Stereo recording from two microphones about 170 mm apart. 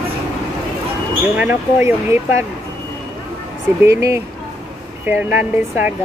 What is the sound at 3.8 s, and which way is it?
Speech, 15° right (ahead or behind).